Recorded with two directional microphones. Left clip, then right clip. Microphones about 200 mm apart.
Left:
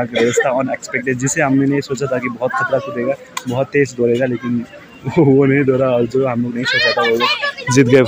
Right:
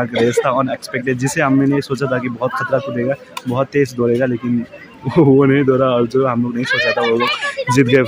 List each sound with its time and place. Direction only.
0.0 s speech: 10° right (ahead or behind)
6.8 s a child's voice: 50° right (ahead or behind)
7.7 s speech: centre (ahead or behind)